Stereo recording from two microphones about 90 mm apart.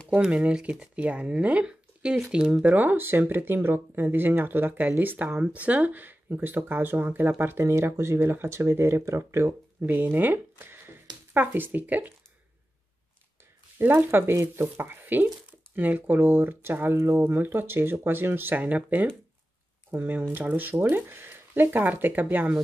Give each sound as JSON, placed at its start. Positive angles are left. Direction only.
{"t": 0.1, "sound": "speech", "side_deg": -15}
{"t": 13.7, "sound": "speech", "side_deg": -25}